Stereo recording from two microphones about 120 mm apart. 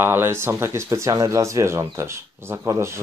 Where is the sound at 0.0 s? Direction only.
20° right (ahead or behind).